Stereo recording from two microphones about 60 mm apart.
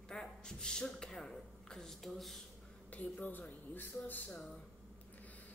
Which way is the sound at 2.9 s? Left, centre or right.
Left.